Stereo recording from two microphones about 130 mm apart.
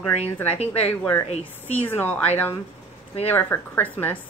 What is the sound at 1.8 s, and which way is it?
Speech, 15° left (ahead or behind).